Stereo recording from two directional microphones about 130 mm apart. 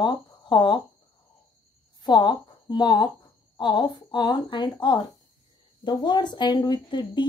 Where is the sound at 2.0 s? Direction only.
35° left (ahead or behind).